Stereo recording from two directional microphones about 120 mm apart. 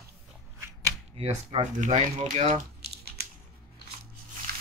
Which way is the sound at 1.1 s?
55° right (ahead or behind).